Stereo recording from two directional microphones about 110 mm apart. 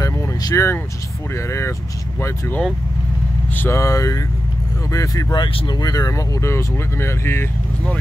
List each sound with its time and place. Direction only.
0.0 s vehicle: 30° left (ahead or behind)
1.3 s speech: 25° left (ahead or behind)